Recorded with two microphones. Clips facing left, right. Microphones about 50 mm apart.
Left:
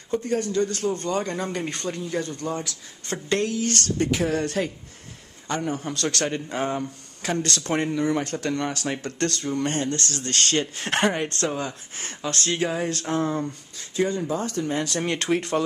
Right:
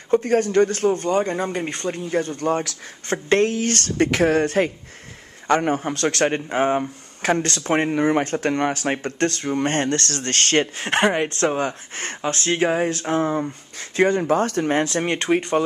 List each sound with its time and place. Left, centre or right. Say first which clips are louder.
0.1 s speech: right 7 dB; right
0.7 s speech: right 6 dB; right
1.0 s speech: right 5 dB; right
2.0 s speech: right 5 dB; right
4.0 s speech: right 7 dB; right
4.4 s speech: right 6 dB; right
5.8 s speech: right 6 dB; right
9.8 s speech: right 4 dB; right
10.8 s speech: right 4 dB; centre
11.4 s speech: right 6 dB; right
12.3 s speech: right 5 dB; right
13.7 s speech: right 6 dB; right
14.9 s speech: right 4 dB; right